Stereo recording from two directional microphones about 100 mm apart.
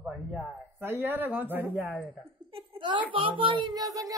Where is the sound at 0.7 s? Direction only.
20° right (ahead or behind).